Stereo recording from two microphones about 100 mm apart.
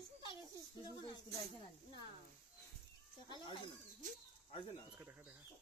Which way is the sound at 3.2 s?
50° left (ahead or behind).